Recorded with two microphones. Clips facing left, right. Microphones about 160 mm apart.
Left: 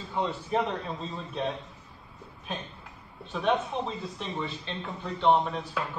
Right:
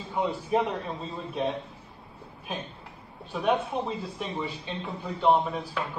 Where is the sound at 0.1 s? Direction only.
10° right (ahead or behind).